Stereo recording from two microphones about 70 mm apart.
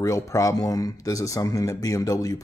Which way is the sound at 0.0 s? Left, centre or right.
Left.